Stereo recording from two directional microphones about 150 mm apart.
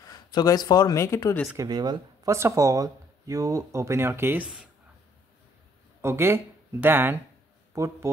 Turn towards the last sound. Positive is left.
turn(degrees=-20)  # may be behind; listen again after turning